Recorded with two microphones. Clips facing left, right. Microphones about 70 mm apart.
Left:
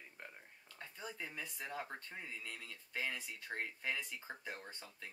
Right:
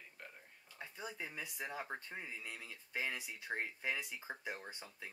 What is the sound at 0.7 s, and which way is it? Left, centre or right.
Speech, centre.